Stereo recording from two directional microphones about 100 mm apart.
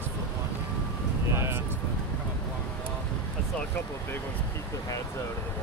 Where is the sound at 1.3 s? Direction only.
25° right (ahead or behind).